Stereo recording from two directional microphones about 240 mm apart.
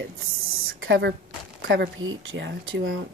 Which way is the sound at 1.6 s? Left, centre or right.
Right.